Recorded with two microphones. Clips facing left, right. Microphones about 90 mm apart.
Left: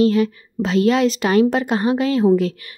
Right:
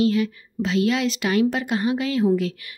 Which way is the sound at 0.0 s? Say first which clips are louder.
Left 5 dB; 40° left (ahead or behind).